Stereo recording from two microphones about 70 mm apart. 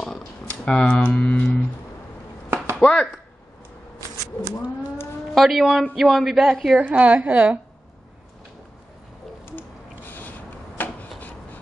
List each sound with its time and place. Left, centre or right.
0.5 s speech: centre
2.5 s a sound: right
2.8 s speech: centre
5.3 s a man's voice: centre
6.8 s a woman's voice: centre
9.5 s a sound: left
10.8 s rub: left